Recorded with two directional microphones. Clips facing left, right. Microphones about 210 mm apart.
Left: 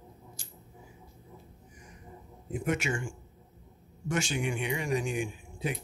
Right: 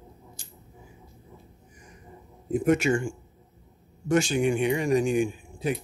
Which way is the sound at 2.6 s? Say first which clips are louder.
Right 8 dB; 35° right (ahead or behind).